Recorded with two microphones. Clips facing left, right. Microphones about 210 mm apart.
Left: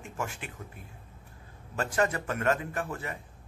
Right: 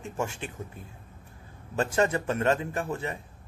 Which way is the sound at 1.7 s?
25° right (ahead or behind).